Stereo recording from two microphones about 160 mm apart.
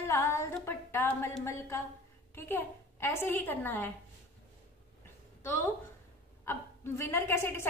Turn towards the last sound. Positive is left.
turn(degrees=15)  # may be behind; listen again after turning